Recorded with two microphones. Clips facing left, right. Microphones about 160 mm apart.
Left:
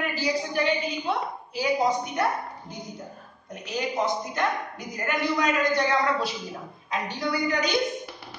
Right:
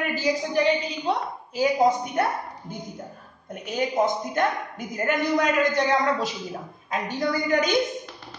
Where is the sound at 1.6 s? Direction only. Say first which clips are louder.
Right 4 dB; 50° right (ahead or behind).